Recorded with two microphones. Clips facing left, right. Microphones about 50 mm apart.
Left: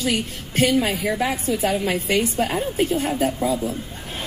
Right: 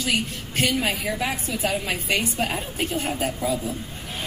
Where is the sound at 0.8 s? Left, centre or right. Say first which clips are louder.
Left 3 dB; left.